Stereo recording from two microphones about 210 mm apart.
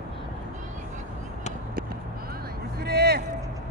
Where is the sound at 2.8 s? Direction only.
50° right (ahead or behind).